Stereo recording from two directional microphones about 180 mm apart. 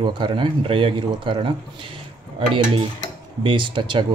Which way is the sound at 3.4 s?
30° right (ahead or behind).